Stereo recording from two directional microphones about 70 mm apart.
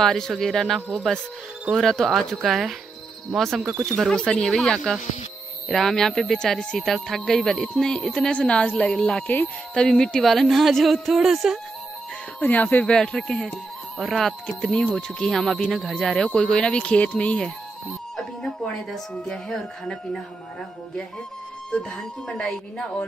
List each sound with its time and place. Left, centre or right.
0.0 s a woman's voice: centre
12.4 s a woman's voice: left
21.6 s speech: centre